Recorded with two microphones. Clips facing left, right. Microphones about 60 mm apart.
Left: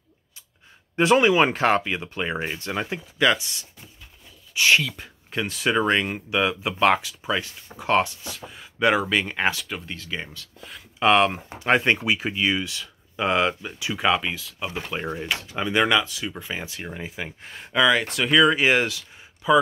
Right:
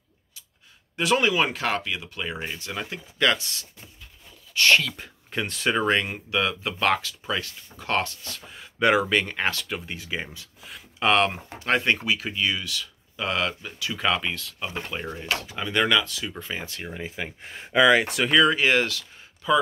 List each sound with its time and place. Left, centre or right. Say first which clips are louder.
1.1 s speech: left 4 dB; left
3.2 s speech: left 2 dB; centre
8.5 s speech: even; centre
9.8 s speech: even; centre
10.6 s speech: left 4 dB; centre
15.0 s speech: left 2 dB; centre
18.7 s speech: left 1 dB; centre